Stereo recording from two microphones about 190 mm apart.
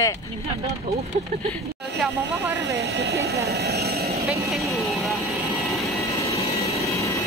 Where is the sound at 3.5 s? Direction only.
55° right (ahead or behind).